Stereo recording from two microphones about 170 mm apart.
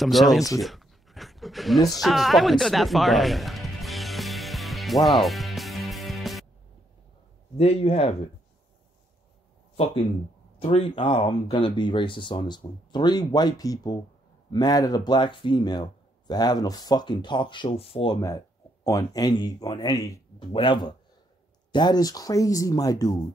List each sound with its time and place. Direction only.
0.0 s speech: centre (ahead or behind)
0.6 s a sound: centre (ahead or behind)
1.9 s music: centre (ahead or behind)
7.5 s speech: 35° left (ahead or behind)
10.6 s speech: 35° left (ahead or behind)
18.9 s speech: 20° left (ahead or behind)